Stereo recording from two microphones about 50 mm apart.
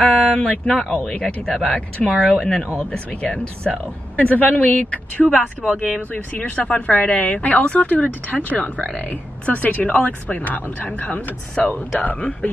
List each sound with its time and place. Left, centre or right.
0.0 s a sound: centre
0.7 s speech: centre
4.2 s speech: left
11.6 s speech: centre